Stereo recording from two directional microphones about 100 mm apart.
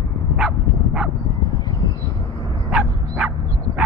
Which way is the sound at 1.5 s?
40° left (ahead or behind).